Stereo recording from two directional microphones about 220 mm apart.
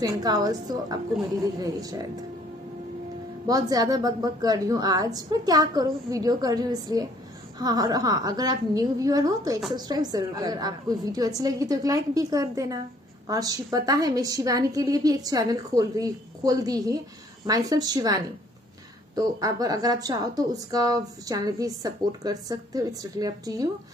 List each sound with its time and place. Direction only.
0.0 s speech: 15° right (ahead or behind)
3.4 s speech: 15° right (ahead or behind)
19.1 s speech: 15° right (ahead or behind)